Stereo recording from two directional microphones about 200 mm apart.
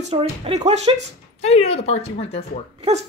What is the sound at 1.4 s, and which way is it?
Speech, 30° left (ahead or behind).